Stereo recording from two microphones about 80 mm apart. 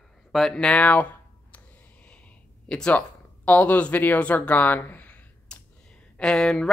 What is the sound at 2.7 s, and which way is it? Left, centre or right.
Speech, centre.